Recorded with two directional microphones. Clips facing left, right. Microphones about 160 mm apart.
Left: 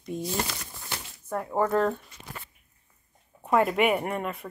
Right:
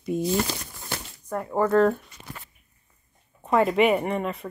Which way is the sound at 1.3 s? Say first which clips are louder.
Right 3 dB; 5° left (ahead or behind).